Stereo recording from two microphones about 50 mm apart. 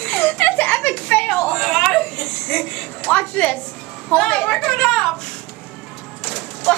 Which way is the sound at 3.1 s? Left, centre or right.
Left.